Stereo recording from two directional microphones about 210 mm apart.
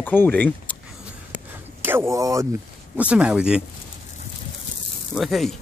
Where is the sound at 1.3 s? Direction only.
10° right (ahead or behind).